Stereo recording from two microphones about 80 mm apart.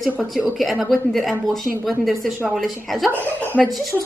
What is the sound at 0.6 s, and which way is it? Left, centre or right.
A woman's voice, centre.